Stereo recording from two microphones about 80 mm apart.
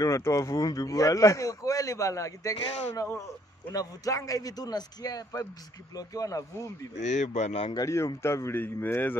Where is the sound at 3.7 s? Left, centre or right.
Left.